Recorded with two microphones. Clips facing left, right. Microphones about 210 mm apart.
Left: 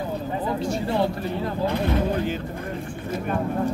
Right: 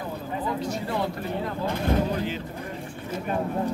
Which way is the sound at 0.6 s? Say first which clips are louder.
Left 4 dB; 30° left (ahead or behind).